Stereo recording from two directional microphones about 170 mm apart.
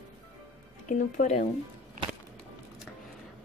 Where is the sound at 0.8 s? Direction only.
50° left (ahead or behind).